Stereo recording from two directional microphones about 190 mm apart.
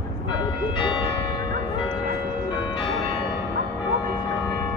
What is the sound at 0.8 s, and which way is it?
Church bell, 25° left (ahead or behind).